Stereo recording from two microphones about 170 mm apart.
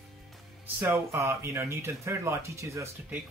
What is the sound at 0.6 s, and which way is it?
Speech, 15° right (ahead or behind).